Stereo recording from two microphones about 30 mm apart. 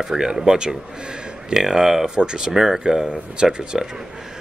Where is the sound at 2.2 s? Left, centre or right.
Right.